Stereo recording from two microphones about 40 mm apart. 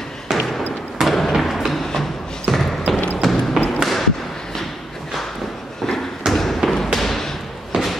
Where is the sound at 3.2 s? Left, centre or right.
Centre.